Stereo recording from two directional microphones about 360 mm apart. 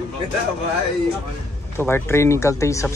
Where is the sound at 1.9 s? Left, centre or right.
Centre.